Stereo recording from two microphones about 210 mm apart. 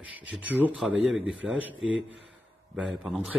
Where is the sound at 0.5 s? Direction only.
5° right (ahead or behind).